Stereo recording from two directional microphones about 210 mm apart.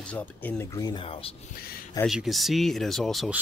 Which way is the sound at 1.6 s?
45° left (ahead or behind).